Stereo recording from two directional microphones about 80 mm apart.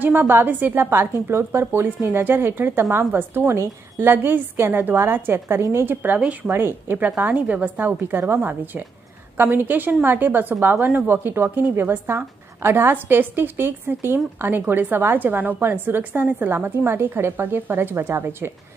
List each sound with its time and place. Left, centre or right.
0.0 s a woman's voice: right
6.1 s speech: centre
6.5 s a woman's voice: right